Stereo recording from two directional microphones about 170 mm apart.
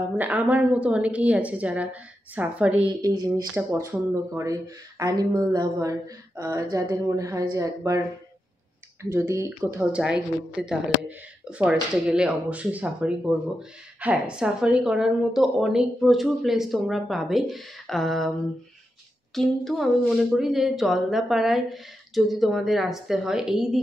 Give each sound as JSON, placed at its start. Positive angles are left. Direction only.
{"t": 0.2, "sound": "speech", "side_deg": -10}
{"t": 9.1, "sound": "a woman's voice", "side_deg": -15}
{"t": 19.3, "sound": "a woman's voice", "side_deg": 0}